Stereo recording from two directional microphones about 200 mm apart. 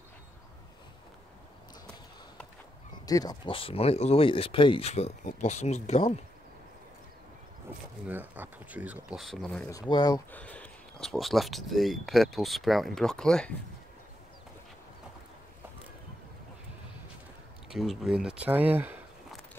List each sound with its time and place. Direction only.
3.1 s speech: 20° left (ahead or behind)
8.1 s speech: 10° right (ahead or behind)
9.7 s speech: 20° left (ahead or behind)
10.3 s speech: 5° left (ahead or behind)
17.6 s speech: centre (ahead or behind)